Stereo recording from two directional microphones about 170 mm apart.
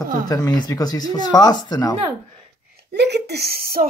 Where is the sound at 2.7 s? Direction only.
80° right; by 3.8 s 65° right (ahead or behind).